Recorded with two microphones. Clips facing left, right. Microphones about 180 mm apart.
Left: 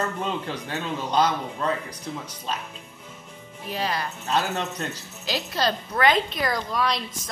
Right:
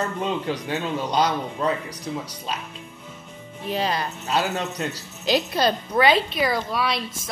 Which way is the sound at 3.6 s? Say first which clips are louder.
Right 3 dB; 20° right (ahead or behind).